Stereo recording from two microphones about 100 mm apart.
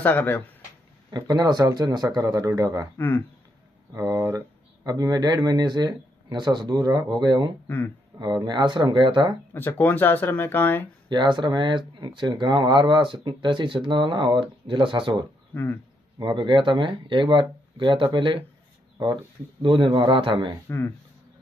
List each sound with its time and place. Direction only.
0.0 s speech: 20° left (ahead or behind)
1.1 s speech: 40° right (ahead or behind)
3.0 s speech: 20° left (ahead or behind)
3.9 s speech: 25° right (ahead or behind)
4.8 s speech: 40° right (ahead or behind)
7.6 s speech: 20° left (ahead or behind)
8.1 s speech: 50° right (ahead or behind)
9.5 s speech: 20° left (ahead or behind)
11.1 s speech: 50° right (ahead or behind)
15.5 s speech: 20° left (ahead or behind)
16.2 s speech: 50° right (ahead or behind)
19.6 s a man's voice: 55° right (ahead or behind)
20.6 s speech: 25° left (ahead or behind)